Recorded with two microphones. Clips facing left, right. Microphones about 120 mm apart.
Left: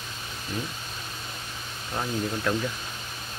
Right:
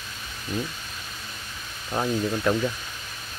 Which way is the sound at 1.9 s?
25° right (ahead or behind).